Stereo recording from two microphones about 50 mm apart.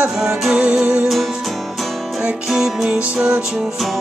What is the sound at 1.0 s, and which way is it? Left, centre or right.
Music, centre.